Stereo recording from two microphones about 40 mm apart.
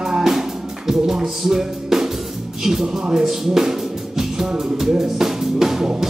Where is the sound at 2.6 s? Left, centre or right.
Centre.